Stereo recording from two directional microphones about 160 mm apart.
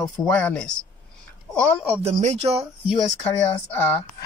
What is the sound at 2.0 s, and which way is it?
Speech, 45° right (ahead or behind).